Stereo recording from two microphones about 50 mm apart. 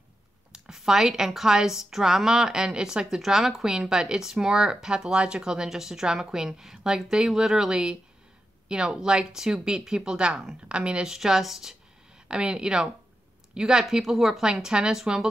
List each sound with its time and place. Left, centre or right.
0.5 s speech: centre
11.1 s speech: centre
12.3 s speech: centre